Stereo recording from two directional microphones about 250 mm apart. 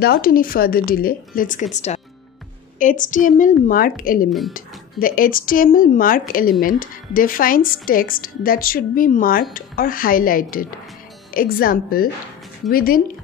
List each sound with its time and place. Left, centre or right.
0.0 s a woman's voice: left
4.3 s speech: centre
4.6 s a woman's voice: left